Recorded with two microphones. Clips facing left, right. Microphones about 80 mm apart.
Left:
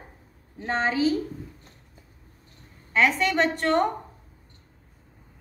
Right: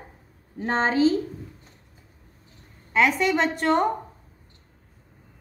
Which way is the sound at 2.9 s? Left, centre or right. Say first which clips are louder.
Right 2 dB; centre.